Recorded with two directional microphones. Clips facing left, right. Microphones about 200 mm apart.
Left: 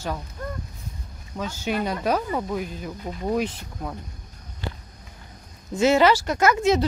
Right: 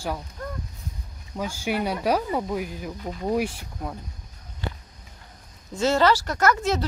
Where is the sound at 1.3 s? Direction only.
10° right (ahead or behind).